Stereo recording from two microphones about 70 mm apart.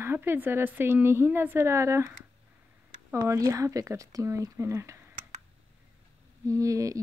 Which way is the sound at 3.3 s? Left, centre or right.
Right.